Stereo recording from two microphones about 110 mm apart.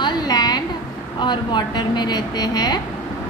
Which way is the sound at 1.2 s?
45° left (ahead or behind).